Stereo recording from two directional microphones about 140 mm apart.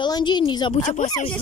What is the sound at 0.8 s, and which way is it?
Speech, 60° left (ahead or behind).